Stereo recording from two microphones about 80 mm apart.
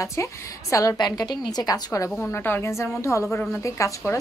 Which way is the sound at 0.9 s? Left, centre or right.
Left.